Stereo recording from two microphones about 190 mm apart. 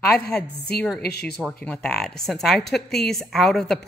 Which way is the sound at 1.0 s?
60° left (ahead or behind).